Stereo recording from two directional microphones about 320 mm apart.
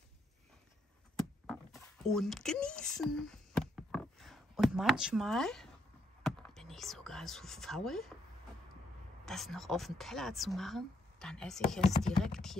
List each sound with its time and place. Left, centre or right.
1.5 s a sound: centre
6.2 s speech: centre
9.2 s a woman's voice: centre